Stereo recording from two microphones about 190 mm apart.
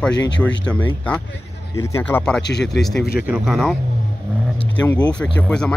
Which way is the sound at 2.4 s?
60° left (ahead or behind).